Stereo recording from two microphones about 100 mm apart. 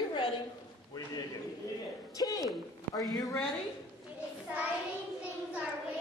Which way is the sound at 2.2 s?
35° left (ahead or behind).